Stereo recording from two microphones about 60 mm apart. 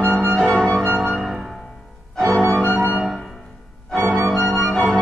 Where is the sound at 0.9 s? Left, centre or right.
Centre.